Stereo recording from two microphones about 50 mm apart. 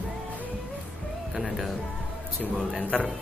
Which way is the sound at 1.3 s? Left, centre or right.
Centre.